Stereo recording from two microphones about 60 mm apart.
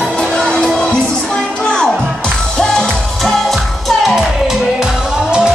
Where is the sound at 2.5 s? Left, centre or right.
Centre.